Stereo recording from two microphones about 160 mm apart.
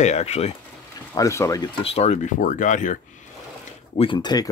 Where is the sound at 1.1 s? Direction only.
20° left (ahead or behind).